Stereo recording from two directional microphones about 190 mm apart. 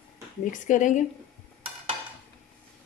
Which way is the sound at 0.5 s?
40° left (ahead or behind).